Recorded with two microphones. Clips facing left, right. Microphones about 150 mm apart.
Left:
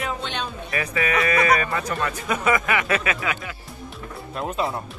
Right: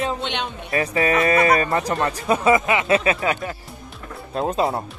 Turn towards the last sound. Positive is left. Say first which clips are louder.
# right 5 dB
turn(degrees=-35)  # may be behind; listen again after turning